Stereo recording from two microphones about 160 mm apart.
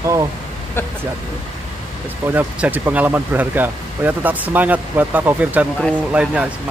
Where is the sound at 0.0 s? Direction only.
20° right (ahead or behind).